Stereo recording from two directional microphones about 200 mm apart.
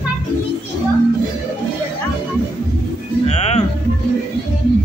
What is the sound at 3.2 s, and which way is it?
Speech, 30° left (ahead or behind).